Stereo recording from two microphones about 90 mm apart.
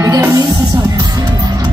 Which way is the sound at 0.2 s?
35° right (ahead or behind).